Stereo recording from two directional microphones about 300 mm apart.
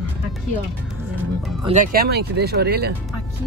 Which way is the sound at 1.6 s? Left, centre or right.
Right.